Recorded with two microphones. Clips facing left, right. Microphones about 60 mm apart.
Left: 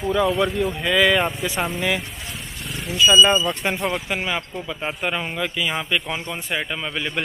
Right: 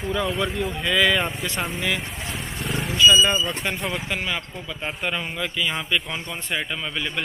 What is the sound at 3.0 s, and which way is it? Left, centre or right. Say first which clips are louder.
Speech: left 2 dB; centre.